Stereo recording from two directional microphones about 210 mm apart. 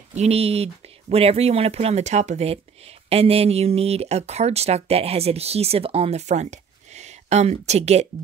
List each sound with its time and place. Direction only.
0.1 s speech: 30° right (ahead or behind)